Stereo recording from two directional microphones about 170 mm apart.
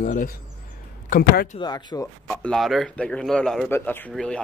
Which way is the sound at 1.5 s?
25° left (ahead or behind).